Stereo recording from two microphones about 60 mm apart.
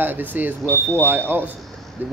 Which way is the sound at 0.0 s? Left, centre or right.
Right.